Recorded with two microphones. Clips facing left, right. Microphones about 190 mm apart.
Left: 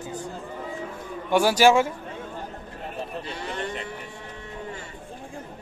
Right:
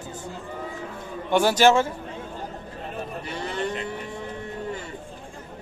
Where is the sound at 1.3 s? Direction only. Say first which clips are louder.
Even; 10° left (ahead or behind).